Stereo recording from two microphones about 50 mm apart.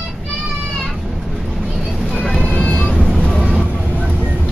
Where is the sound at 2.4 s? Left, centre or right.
Left.